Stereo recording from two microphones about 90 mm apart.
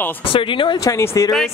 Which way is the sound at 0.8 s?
35° left (ahead or behind).